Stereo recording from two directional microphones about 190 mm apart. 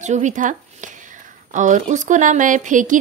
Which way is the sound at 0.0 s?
40° right (ahead or behind).